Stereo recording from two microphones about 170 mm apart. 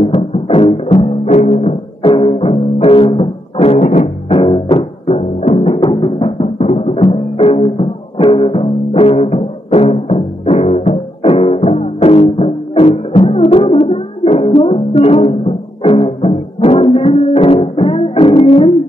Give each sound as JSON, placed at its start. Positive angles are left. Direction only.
{"t": 0.0, "sound": "music", "side_deg": 35}
{"t": 4.3, "sound": "timpani", "side_deg": 35}